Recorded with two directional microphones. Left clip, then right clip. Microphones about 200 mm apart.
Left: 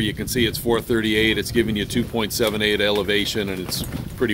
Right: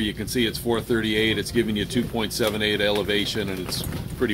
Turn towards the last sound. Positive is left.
turn(degrees=65)  # may be behind; listen again after turning